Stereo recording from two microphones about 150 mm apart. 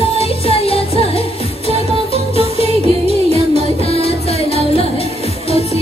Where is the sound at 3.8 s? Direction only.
40° left (ahead or behind).